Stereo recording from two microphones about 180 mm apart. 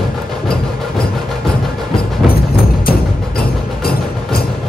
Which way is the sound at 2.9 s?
60° left (ahead or behind).